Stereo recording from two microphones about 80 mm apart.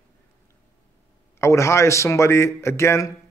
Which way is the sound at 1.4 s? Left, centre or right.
Left.